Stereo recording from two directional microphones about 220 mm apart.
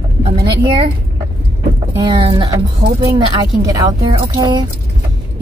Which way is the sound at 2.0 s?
25° right (ahead or behind).